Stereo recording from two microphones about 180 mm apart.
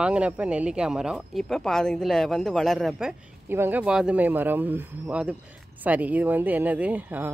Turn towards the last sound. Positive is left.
turn(degrees=-10)  # may be behind; listen again after turning